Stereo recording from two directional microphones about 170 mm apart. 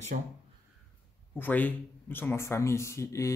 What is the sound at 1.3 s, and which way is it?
Speech, 10° left (ahead or behind).